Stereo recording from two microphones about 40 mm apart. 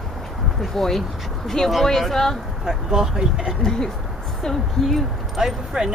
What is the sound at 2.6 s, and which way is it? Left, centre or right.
Speech, centre.